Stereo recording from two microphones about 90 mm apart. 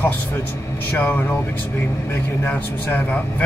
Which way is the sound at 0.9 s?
20° left (ahead or behind).